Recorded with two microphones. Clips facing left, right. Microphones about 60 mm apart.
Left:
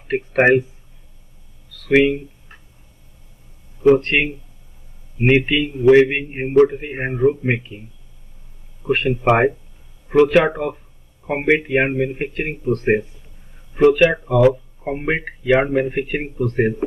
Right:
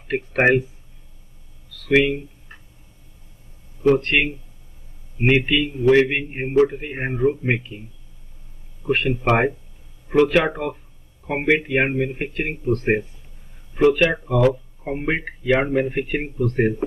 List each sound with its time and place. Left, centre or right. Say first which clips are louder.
0.1 s speech: left 3 dB; centre
1.9 s speech: left 3 dB; centre
3.8 s speech: left 3 dB; centre
8.8 s speech: left 3 dB; centre
13.9 s speech: left 4 dB; centre